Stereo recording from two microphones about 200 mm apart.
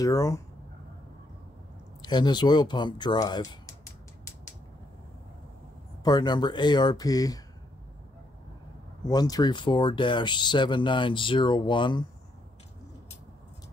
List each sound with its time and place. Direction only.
0.0 s speech: 15° left (ahead or behind)
2.0 s speech: 20° left (ahead or behind)
6.0 s speech: 20° left (ahead or behind)
9.0 s speech: 20° left (ahead or behind)